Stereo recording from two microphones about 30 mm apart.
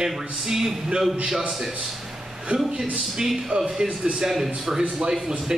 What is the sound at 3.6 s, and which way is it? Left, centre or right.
Speech, centre.